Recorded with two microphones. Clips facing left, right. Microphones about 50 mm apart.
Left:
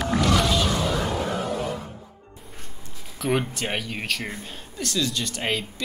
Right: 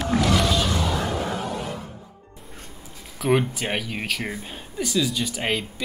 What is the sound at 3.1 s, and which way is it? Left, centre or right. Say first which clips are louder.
Speech: right 3 dB; centre.